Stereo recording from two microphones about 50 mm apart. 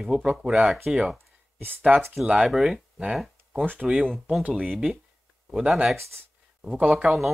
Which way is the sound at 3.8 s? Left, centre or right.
Centre.